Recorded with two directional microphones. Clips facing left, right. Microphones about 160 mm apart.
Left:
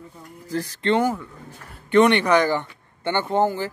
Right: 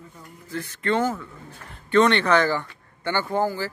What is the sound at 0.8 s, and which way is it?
A man's voice, 15° left (ahead or behind).